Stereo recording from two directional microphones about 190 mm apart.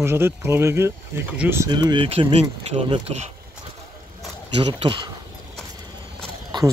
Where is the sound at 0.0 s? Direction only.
15° right (ahead or behind).